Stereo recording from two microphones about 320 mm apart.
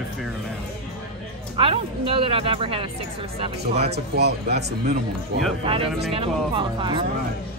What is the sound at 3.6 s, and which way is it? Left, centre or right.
Speech, right.